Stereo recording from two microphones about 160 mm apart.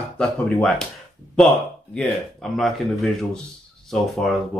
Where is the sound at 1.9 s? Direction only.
5° left (ahead or behind).